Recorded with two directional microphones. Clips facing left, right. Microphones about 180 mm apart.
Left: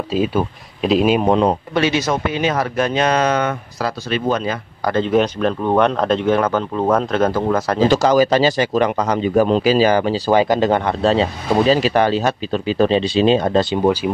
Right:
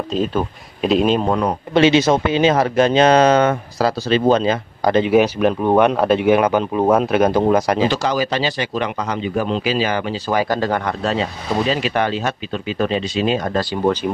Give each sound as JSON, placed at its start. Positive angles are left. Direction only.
{"t": 0.1, "sound": "speech", "side_deg": 10}
{"t": 1.2, "sound": "speech", "side_deg": 20}
{"t": 1.7, "sound": "speech", "side_deg": -25}
{"t": 5.1, "sound": "speech", "side_deg": -10}
{"t": 7.9, "sound": "a man's voice", "side_deg": 45}
{"t": 10.4, "sound": "a man's voice", "side_deg": 20}